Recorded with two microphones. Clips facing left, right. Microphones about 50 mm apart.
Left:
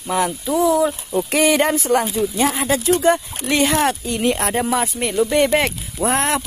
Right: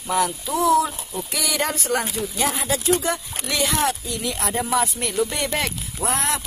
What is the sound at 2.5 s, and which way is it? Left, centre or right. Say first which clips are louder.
Speech: left 4 dB; left.